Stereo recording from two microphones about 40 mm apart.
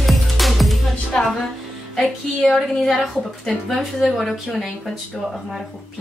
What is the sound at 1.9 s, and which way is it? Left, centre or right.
Music, centre.